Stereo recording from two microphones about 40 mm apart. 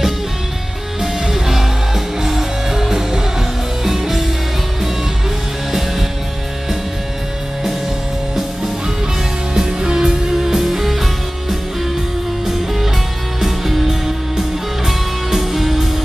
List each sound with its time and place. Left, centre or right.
1.0 s music: centre
5.7 s music: centre
9.5 s music: centre
12.4 s music: centre